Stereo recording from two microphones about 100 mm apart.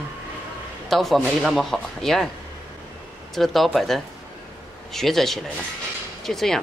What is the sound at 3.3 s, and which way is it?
A man's voice, centre (ahead or behind).